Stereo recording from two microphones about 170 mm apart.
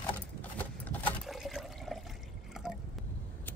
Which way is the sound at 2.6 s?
Centre (ahead or behind).